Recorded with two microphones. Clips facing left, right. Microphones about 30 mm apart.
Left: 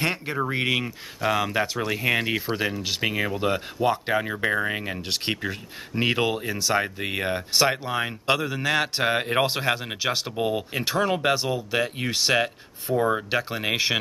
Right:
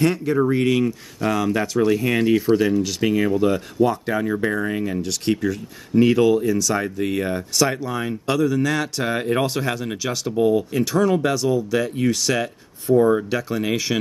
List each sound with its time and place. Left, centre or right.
0.0 s speech: left
2.8 s speech: left
12.9 s speech: centre
13.3 s speech: left